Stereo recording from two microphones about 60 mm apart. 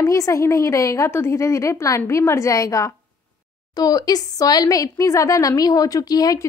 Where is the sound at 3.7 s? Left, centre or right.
Left.